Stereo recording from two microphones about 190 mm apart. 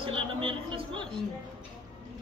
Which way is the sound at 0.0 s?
30° right (ahead or behind).